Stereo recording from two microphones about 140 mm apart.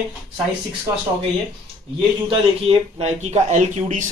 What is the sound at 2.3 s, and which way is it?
Speech, 45° right (ahead or behind).